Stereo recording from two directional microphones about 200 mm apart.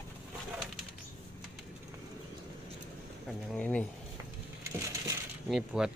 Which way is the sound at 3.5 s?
5° left (ahead or behind).